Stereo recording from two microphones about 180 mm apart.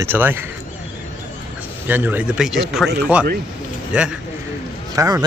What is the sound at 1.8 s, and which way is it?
Speech, 10° right (ahead or behind).